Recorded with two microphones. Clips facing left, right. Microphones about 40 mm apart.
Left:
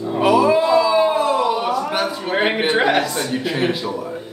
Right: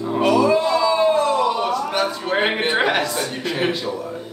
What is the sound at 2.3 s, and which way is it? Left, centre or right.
Speech, centre.